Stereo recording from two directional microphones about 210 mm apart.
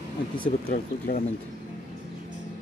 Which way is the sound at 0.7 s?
45° left (ahead or behind).